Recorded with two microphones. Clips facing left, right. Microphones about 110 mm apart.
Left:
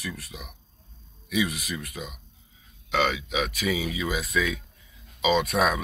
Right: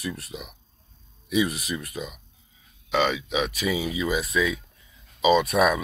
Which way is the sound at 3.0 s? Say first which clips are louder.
Right 2 dB; 30° right (ahead or behind).